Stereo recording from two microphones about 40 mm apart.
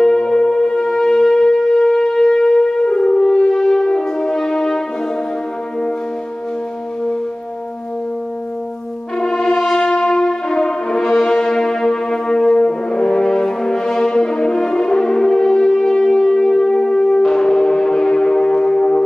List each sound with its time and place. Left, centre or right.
0.0 s shofar: centre
2.8 s french horn: left
9.2 s brass instrument: centre